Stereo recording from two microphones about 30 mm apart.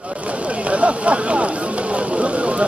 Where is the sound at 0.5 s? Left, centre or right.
Right.